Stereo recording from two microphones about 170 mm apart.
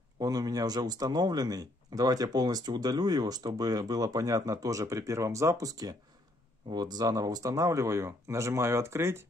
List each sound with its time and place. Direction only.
0.2 s speech: 25° right (ahead or behind)